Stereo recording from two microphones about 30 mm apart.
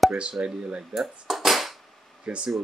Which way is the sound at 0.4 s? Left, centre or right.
Right.